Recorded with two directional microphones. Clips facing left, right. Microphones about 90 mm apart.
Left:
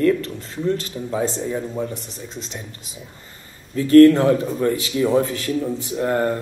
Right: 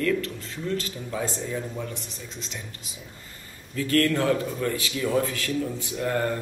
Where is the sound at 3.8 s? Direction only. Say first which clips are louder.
Left 13 dB; 30° left (ahead or behind).